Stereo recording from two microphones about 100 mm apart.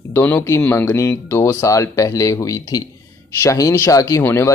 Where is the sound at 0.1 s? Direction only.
25° left (ahead or behind).